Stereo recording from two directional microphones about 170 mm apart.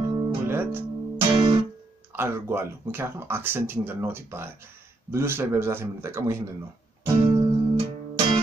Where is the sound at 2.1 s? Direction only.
15° right (ahead or behind).